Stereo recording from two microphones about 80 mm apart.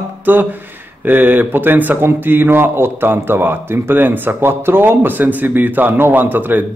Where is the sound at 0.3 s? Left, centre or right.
Right.